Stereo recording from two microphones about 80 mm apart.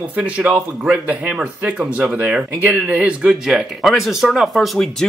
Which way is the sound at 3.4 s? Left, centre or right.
Centre.